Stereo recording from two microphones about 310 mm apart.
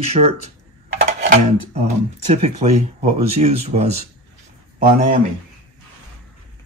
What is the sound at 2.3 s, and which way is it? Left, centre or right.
Speech, right.